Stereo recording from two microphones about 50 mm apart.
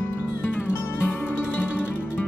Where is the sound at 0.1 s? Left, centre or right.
Left.